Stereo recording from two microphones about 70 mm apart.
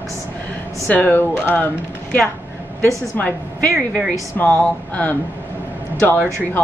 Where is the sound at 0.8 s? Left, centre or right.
Left.